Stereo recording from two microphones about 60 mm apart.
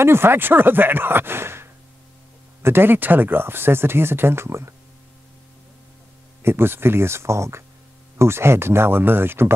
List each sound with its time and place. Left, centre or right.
0.0 s speech: right
6.4 s speech: right